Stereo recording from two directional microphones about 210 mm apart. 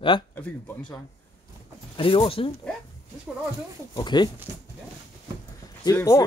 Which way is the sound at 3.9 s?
20° left (ahead or behind).